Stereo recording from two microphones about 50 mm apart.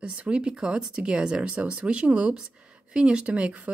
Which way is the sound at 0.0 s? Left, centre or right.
Right.